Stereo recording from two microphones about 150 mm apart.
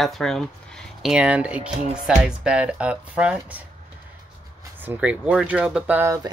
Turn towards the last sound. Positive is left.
turn(degrees=-20)  # may be behind; listen again after turning